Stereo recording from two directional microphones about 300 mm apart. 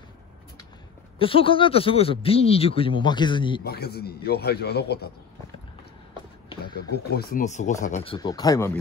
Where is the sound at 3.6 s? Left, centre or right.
Left.